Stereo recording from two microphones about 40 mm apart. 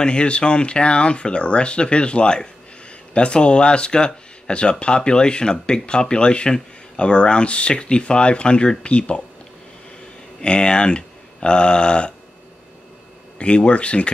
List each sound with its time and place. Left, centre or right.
0.0 s speech: left
10.4 s speech: left
13.4 s speech: left